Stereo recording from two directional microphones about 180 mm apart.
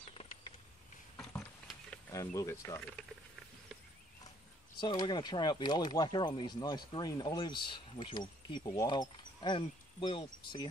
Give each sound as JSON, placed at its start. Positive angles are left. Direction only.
{"t": 2.1, "sound": "speech", "side_deg": 20}
{"t": 4.7, "sound": "speech", "side_deg": 25}